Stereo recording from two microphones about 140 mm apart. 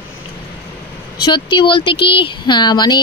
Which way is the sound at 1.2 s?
35° left (ahead or behind).